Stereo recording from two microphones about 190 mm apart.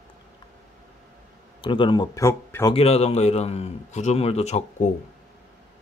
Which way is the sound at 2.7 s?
35° left (ahead or behind).